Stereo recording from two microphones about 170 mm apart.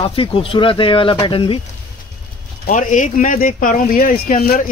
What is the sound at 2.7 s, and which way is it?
Speech, 45° left (ahead or behind).